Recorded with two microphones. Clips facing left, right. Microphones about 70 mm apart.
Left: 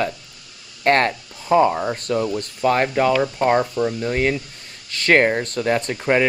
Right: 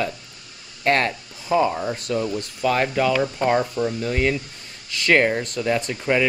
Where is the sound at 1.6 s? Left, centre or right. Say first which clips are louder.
Left 3 dB; left.